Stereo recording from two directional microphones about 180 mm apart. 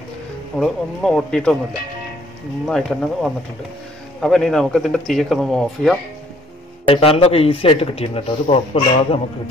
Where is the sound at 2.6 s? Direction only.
5° left (ahead or behind).